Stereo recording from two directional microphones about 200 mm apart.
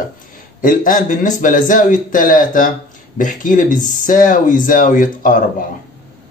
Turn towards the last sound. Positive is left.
turn(degrees=40)  # may be behind; listen again after turning